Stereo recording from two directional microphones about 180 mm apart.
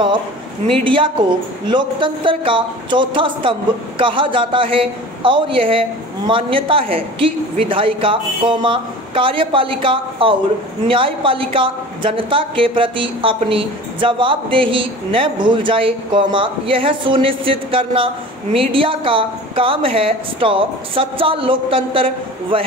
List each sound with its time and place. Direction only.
0.8 s a woman's voice: 30° right (ahead or behind)